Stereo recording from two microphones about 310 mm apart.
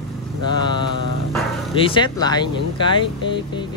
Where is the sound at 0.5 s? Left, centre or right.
Centre.